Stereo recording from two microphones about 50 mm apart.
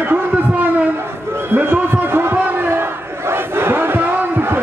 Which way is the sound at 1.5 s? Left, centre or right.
Right.